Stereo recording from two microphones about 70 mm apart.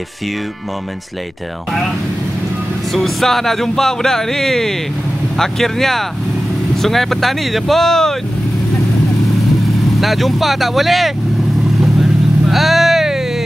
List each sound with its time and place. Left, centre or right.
2.9 s speech: centre
9.9 s speech: centre
11.8 s vehicle: centre